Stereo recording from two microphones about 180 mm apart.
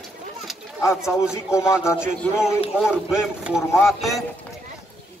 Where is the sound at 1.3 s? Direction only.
15° left (ahead or behind).